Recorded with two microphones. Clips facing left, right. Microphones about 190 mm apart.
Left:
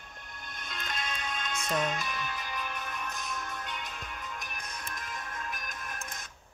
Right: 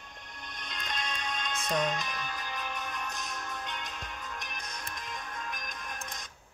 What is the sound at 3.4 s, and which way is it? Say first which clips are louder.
Music: even; 5° left (ahead or behind).